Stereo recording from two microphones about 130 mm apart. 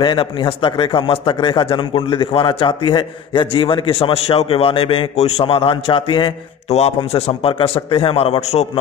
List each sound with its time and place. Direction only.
0.0 s a man's voice: 40° left (ahead or behind)
7.1 s a man's voice: 50° left (ahead or behind)